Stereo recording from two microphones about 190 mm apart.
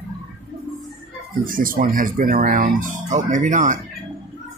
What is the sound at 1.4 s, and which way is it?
Speech, 50° right (ahead or behind).